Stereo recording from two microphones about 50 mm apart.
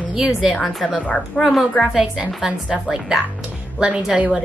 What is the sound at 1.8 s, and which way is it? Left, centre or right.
A woman's voice, centre.